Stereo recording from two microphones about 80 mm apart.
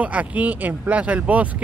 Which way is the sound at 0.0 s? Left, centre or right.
Centre.